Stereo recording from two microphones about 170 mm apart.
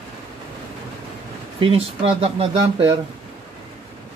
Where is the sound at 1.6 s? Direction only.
35° right (ahead or behind).